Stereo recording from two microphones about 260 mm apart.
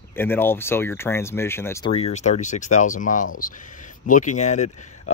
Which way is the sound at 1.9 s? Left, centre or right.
Left.